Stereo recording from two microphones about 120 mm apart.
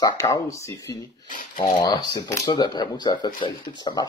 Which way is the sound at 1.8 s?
25° left (ahead or behind).